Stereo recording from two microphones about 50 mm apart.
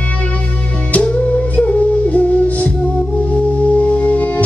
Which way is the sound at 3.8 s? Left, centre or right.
Left.